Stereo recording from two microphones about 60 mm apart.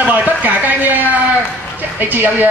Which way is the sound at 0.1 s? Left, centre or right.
Right.